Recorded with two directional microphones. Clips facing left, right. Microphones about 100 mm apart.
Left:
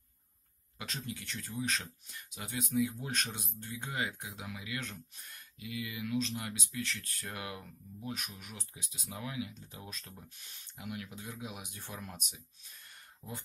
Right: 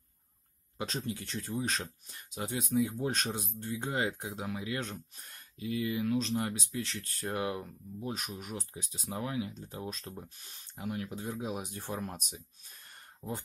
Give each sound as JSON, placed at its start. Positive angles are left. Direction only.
{"t": 0.7, "sound": "speech", "side_deg": -30}